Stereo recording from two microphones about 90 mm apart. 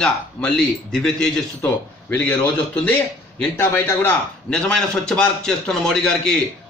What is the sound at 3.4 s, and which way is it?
Speech, 20° left (ahead or behind).